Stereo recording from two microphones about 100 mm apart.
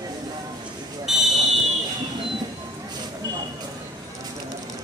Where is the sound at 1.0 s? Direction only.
Centre (ahead or behind).